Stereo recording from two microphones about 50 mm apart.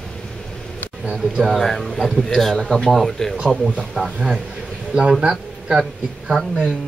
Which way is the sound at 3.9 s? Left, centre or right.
Centre.